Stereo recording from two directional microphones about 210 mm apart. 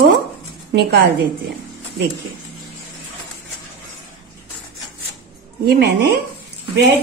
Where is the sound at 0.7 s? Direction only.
50° right (ahead or behind).